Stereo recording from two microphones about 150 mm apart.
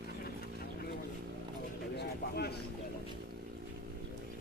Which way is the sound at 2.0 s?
90° left.